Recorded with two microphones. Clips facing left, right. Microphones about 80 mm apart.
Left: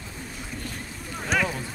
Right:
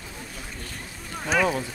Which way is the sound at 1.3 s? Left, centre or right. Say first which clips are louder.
Right 3 dB; centre.